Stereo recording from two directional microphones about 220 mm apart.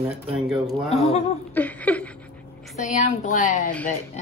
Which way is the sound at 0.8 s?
30° left (ahead or behind).